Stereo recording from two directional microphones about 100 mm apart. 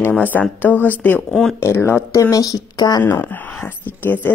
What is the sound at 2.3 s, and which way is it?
Speech, 35° left (ahead or behind).